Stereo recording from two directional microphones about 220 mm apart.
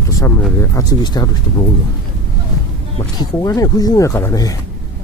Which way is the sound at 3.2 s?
15° left (ahead or behind).